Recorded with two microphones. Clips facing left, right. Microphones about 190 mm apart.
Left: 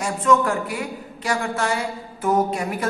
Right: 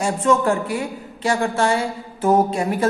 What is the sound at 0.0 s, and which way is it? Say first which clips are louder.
A woman's voice: right 1 dB; 30° right (ahead or behind).